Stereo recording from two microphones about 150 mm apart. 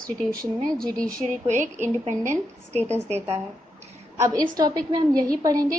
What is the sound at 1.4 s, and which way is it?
Speech, 55° right (ahead or behind).